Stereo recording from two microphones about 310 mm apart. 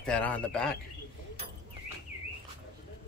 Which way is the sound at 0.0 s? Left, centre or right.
Centre.